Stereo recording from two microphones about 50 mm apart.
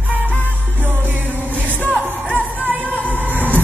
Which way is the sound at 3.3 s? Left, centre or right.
Right.